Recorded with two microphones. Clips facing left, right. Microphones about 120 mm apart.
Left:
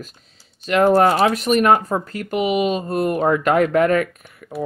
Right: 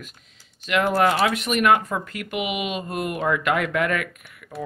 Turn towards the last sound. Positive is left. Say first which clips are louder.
# left 4 dB
turn(degrees=35)  # may be behind; listen again after turning